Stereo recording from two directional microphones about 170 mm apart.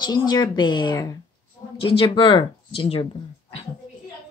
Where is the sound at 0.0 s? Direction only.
25° left (ahead or behind).